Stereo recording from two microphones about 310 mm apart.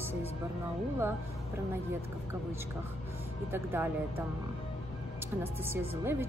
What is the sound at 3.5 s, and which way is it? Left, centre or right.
Speech, centre.